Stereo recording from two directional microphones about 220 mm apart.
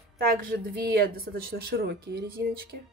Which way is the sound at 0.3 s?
45° right (ahead or behind).